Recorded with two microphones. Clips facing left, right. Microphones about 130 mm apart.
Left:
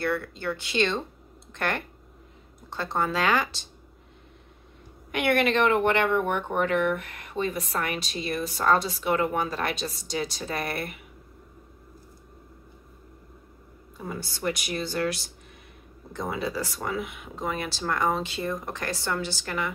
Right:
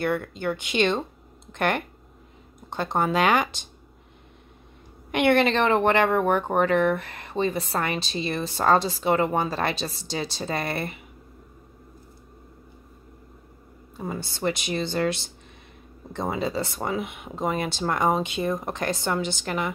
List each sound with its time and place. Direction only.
0.0 s speech: 15° right (ahead or behind)
5.1 s a woman's voice: 25° right (ahead or behind)
13.9 s speech: 25° right (ahead or behind)